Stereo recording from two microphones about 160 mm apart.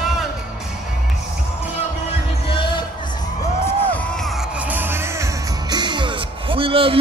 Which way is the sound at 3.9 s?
5° left (ahead or behind).